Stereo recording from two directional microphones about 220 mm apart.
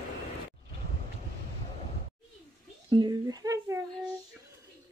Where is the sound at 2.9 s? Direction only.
20° right (ahead or behind).